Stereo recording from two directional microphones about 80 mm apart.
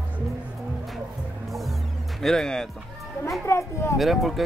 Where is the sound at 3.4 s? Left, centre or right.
Left.